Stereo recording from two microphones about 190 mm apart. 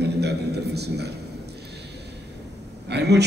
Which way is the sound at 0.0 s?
60° right (ahead or behind).